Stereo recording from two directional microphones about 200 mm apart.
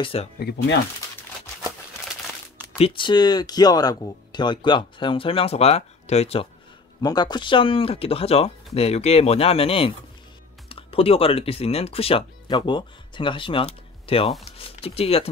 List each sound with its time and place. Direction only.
0.0 s speech: 30° left (ahead or behind)
0.4 s speech: 55° left (ahead or behind)
2.8 s speech: 25° left (ahead or behind)
7.0 s speech: 20° left (ahead or behind)